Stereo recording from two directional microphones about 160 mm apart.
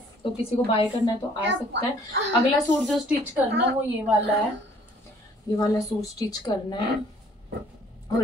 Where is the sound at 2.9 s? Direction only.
10° right (ahead or behind).